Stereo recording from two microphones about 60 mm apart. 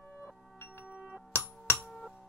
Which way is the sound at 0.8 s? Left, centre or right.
Centre.